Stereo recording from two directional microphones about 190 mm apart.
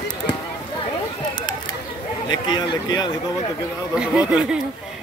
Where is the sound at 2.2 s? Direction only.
25° left (ahead or behind).